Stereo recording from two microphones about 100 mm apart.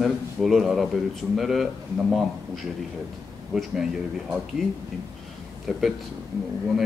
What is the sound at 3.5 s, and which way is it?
Speech, 5° right (ahead or behind).